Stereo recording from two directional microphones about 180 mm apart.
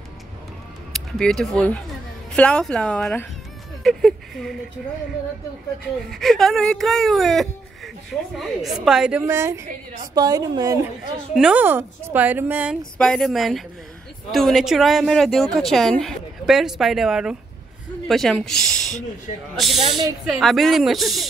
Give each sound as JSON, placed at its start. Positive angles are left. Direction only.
{"t": 0.9, "sound": "speech", "side_deg": 0}
{"t": 6.0, "sound": "speech", "side_deg": 0}
{"t": 9.2, "sound": "a woman's voice", "side_deg": -15}
{"t": 11.0, "sound": "a woman's voice", "side_deg": -5}
{"t": 12.9, "sound": "speech", "side_deg": 5}